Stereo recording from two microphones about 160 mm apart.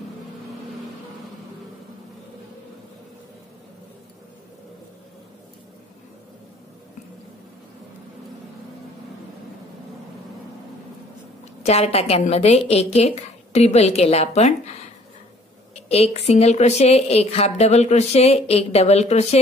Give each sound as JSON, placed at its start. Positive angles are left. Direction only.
{"t": 11.6, "sound": "speech", "side_deg": 40}
{"t": 15.7, "sound": "speech", "side_deg": 40}